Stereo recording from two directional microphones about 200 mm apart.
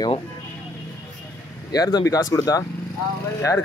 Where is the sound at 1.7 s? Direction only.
20° left (ahead or behind).